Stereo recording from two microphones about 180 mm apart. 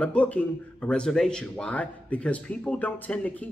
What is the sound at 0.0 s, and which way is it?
A man's voice, 10° left (ahead or behind).